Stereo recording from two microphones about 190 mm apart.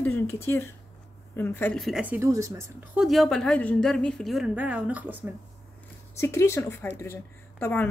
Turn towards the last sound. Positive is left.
turn(degrees=10)  # may be behind; listen again after turning